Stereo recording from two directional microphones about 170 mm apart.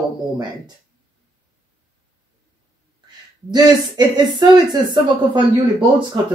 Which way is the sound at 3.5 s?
25° right (ahead or behind).